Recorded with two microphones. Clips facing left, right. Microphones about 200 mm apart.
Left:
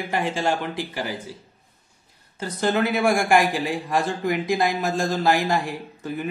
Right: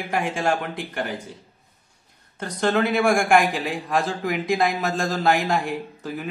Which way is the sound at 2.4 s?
Centre (ahead or behind).